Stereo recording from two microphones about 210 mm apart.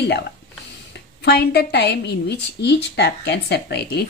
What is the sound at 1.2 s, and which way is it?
A woman's voice, 50° left (ahead or behind).